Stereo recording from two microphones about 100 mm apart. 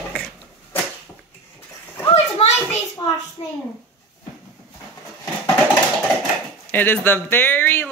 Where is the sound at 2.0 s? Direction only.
75° left (ahead or behind).